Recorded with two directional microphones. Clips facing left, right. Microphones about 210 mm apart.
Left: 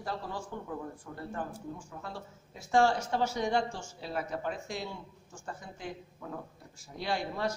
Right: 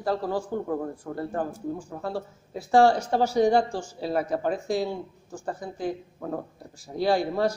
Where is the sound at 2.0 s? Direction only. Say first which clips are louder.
Right 11 dB; 35° right (ahead or behind).